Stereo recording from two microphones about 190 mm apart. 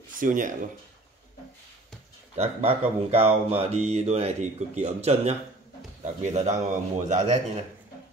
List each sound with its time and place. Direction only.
0.1 s speech: 45° right (ahead or behind)
2.3 s speech: 30° right (ahead or behind)